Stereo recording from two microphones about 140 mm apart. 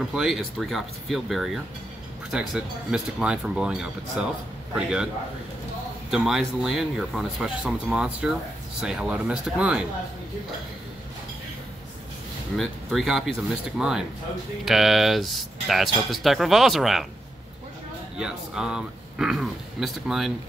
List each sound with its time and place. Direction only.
0.0 s speech: 5° right (ahead or behind)
6.0 s speech: 5° right (ahead or behind)
12.5 s speech: centre (ahead or behind)
18.1 s speech: 5° right (ahead or behind)